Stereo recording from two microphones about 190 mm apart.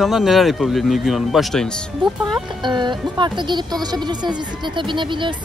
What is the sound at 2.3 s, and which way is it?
Speech, 25° right (ahead or behind).